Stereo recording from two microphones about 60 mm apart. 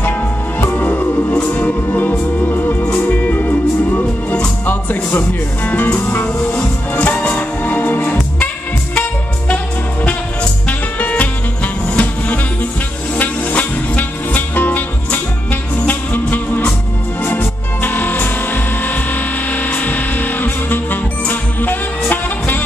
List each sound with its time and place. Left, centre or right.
0.6 s music: left
10.7 s music: left